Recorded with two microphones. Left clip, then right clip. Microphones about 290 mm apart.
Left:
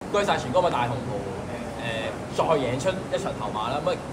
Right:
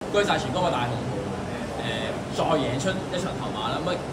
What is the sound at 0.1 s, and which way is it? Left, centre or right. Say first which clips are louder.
Speech: left 1 dB; centre.